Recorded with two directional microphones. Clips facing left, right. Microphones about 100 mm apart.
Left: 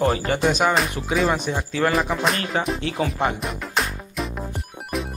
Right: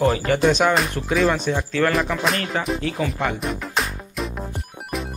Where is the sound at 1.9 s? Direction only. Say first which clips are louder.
Even; centre (ahead or behind).